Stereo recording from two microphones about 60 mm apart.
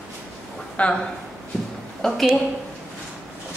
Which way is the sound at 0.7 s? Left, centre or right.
Centre.